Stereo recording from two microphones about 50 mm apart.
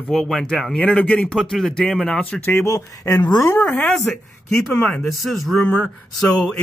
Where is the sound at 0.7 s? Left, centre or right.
Left.